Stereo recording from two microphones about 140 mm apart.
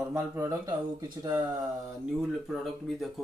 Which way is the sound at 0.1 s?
20° right (ahead or behind).